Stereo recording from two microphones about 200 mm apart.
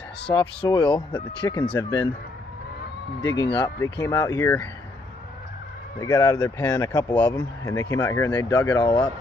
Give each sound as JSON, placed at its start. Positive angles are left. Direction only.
{"t": 0.3, "sound": "speech", "side_deg": 20}
{"t": 3.2, "sound": "speech", "side_deg": 20}
{"t": 5.9, "sound": "speech", "side_deg": 15}